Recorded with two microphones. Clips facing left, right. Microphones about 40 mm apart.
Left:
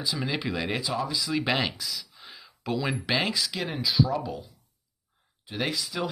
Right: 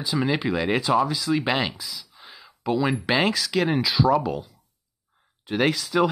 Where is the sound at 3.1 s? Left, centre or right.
Right.